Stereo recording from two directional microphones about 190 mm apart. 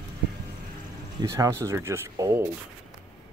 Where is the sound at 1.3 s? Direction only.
15° right (ahead or behind).